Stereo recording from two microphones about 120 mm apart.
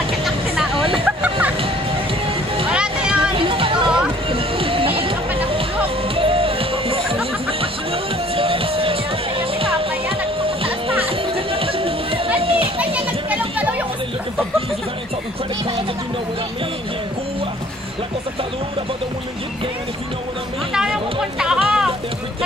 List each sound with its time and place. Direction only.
0.7 s vehicle: 50° right (ahead or behind)
1.0 s a sound: 10° right (ahead or behind)
2.7 s a sound: 10° right (ahead or behind)
3.3 s music: 50° right (ahead or behind)
6.1 s music: 50° right (ahead or behind)
12.7 s children playing: 10° right (ahead or behind)
20.7 s music: 5° right (ahead or behind)